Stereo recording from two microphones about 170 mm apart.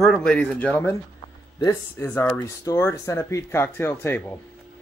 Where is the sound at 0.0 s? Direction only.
5° left (ahead or behind).